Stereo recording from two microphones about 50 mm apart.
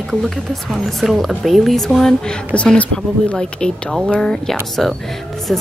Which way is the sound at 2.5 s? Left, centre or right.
Left.